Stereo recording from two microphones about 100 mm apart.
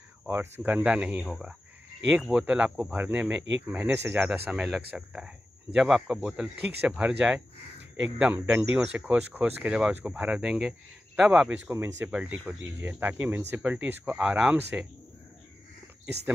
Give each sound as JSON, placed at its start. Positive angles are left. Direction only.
{"t": 0.3, "sound": "speech", "side_deg": -20}
{"t": 4.2, "sound": "speech", "side_deg": -10}
{"t": 11.5, "sound": "speech", "side_deg": -25}
{"t": 12.1, "sound": "speech", "side_deg": -10}